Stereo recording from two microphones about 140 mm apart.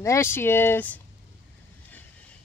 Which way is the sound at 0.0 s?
20° left (ahead or behind).